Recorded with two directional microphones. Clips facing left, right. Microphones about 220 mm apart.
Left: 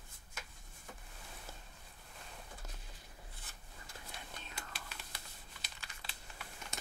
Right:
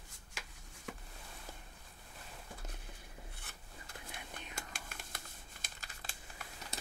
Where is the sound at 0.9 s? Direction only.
80° right.